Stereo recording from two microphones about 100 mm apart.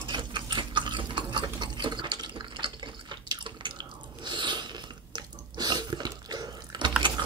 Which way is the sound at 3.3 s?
50° right (ahead or behind).